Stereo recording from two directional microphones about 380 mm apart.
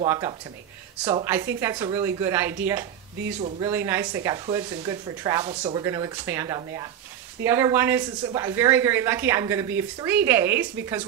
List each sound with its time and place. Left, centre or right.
0.0 s speech: centre
3.3 s speech: centre